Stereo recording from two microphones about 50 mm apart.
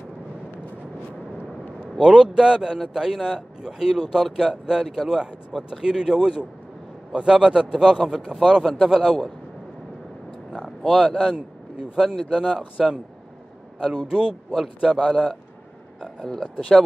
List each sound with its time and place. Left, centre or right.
2.0 s a man's voice: centre
5.2 s a man's voice: centre
10.8 s speech: centre
11.1 s speech: centre
12.4 s speech: centre
15.0 s a man's voice: centre